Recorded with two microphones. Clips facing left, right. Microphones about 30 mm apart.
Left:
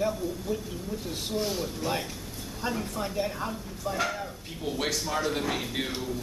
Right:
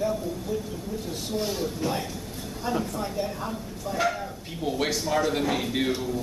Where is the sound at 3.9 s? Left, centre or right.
Centre.